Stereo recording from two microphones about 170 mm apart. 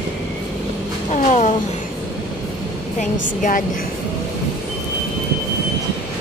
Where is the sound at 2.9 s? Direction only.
50° left (ahead or behind).